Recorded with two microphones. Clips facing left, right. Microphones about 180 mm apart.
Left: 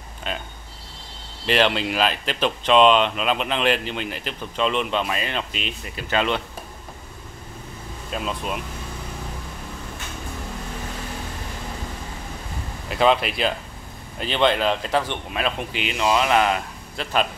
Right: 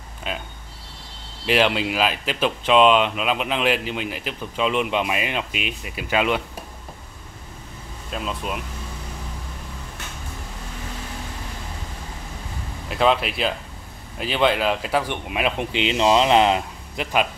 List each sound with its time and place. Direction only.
0.3 s speech: 5° right (ahead or behind)
8.1 s speech: centre (ahead or behind)
12.8 s speech: centre (ahead or behind)